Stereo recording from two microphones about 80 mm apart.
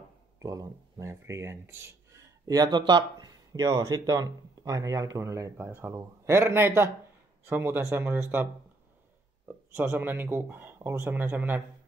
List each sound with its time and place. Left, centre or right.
0.4 s speech: right
2.4 s a man's voice: right
9.8 s a man's voice: right